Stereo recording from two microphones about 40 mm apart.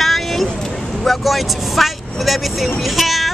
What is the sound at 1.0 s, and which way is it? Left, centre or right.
Speech, centre.